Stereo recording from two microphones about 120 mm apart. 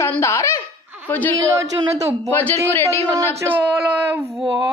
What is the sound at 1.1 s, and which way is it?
Female singing, 15° left (ahead or behind).